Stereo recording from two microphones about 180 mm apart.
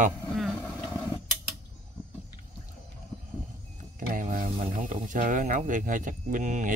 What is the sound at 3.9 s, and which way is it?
Speech, 45° right (ahead or behind).